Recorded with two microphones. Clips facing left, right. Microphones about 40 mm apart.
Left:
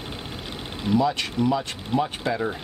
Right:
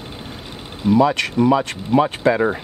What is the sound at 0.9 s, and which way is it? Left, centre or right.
Speech, right.